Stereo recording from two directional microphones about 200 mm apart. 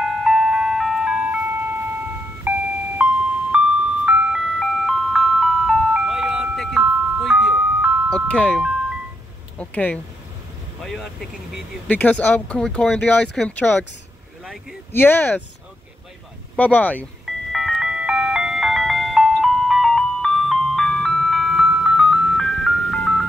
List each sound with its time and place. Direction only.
0.0 s music: centre (ahead or behind)
2.5 s doorbell: 10° right (ahead or behind)
3.0 s music: 5° right (ahead or behind)
3.5 s ice cream truck: 5° right (ahead or behind)
8.3 s speech: 5° left (ahead or behind)
14.4 s vehicle: 5° right (ahead or behind)
14.9 s speech: 10° left (ahead or behind)
16.5 s speech: 10° left (ahead or behind)
17.5 s music: centre (ahead or behind)